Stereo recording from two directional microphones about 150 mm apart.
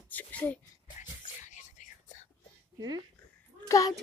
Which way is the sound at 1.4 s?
55° left (ahead or behind).